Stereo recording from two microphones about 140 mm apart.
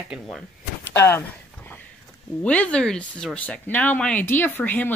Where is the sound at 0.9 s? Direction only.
15° left (ahead or behind).